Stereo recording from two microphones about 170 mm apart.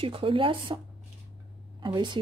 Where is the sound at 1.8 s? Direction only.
25° right (ahead or behind).